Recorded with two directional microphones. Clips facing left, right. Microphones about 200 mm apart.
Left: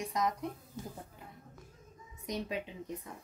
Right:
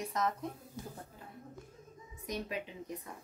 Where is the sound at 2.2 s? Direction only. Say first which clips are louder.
Left 2 dB; 25° left (ahead or behind).